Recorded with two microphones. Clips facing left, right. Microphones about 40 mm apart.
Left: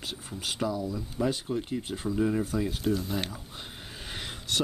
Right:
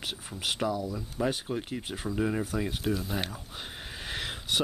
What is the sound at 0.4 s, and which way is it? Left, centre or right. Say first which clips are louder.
Speech: right 1 dB; right.